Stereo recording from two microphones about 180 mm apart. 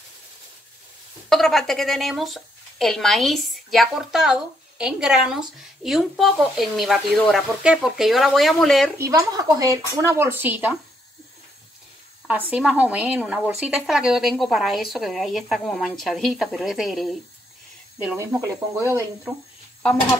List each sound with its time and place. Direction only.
1.3 s a woman's voice: centre (ahead or behind)
8.9 s speech: 15° right (ahead or behind)
12.3 s a woman's voice: 10° right (ahead or behind)
17.9 s speech: 15° right (ahead or behind)